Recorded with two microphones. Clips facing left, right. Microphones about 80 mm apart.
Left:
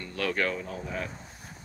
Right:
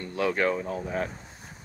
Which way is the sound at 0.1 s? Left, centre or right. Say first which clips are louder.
Right 4 dB; right.